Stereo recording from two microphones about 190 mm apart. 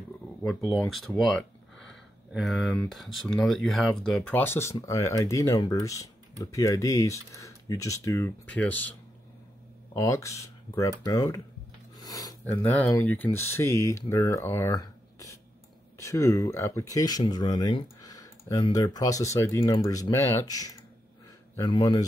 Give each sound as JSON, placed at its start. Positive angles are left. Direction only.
{"t": 0.5, "sound": "speech", "side_deg": 0}
{"t": 9.9, "sound": "speech", "side_deg": 15}